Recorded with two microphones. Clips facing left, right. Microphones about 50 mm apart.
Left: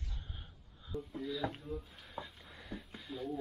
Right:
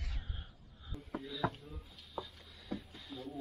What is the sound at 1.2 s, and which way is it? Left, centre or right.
Speech, centre.